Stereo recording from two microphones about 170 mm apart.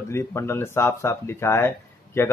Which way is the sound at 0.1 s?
15° left (ahead or behind).